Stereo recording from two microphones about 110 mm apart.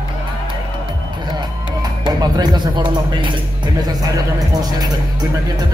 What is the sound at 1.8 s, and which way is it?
Speech, 40° right (ahead or behind).